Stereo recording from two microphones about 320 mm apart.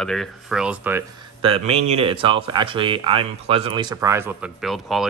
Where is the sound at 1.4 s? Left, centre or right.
Centre.